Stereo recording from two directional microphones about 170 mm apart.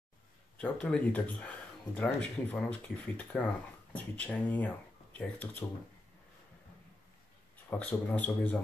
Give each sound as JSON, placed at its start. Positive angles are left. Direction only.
{"t": 0.6, "sound": "speech", "side_deg": 5}
{"t": 7.7, "sound": "speech", "side_deg": 5}